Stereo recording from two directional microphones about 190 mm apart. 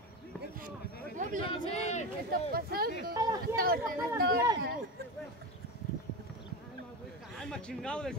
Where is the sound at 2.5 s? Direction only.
50° right (ahead or behind).